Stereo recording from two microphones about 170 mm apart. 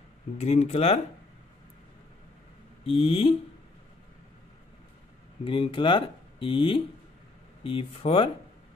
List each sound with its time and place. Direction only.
0.4 s speech: 40° left (ahead or behind)
2.8 s speech: 30° left (ahead or behind)
5.4 s speech: 30° left (ahead or behind)